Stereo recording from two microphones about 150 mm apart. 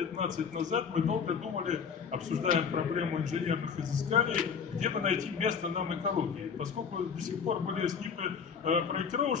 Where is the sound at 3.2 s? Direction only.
50° right (ahead or behind).